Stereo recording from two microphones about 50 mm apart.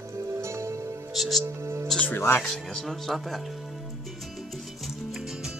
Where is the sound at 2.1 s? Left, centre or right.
Left.